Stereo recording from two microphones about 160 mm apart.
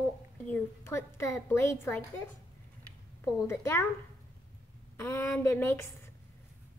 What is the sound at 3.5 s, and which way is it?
Speech, 15° left (ahead or behind).